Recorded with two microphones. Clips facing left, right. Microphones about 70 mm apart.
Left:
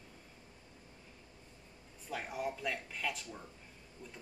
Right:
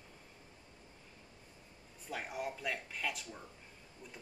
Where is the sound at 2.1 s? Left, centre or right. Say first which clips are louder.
Left 2 dB; centre.